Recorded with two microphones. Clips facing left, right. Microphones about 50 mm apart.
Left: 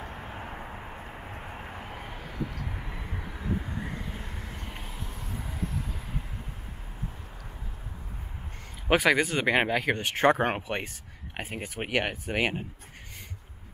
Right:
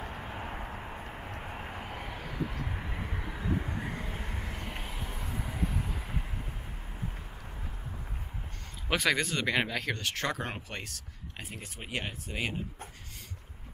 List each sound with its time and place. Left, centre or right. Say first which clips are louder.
0.0 s vehicle: even; centre
8.9 s speech: left 6 dB; centre; by 10.8 s left
11.8 s speech: left 8 dB; left